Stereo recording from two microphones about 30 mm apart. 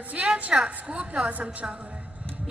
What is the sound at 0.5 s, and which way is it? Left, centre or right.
Speech, right.